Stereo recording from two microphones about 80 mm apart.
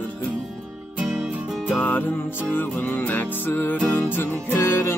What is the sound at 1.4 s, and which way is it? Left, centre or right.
Music, centre.